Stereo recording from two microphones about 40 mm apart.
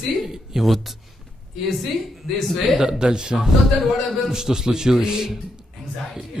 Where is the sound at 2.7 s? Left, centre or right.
Centre.